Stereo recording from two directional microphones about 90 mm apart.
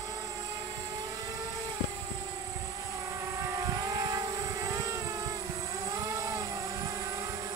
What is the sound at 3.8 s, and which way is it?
Vehicle, 45° right (ahead or behind).